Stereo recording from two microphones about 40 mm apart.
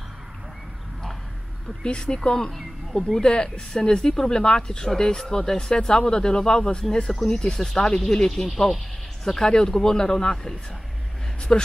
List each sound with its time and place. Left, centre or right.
1.8 s speech: left